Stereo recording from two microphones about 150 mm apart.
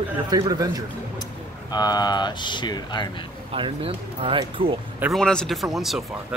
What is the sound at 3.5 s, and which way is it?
Speech, 40° right (ahead or behind).